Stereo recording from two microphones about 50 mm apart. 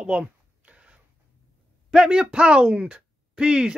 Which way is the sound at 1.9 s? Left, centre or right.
Centre.